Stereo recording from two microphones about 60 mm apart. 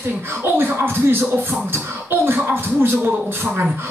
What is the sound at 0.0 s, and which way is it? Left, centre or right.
Speech, right.